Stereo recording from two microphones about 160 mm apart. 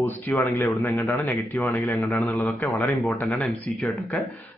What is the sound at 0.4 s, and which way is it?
Speech, 15° left (ahead or behind).